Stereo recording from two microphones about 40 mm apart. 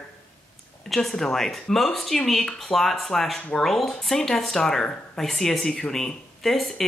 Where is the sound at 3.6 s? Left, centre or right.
Centre.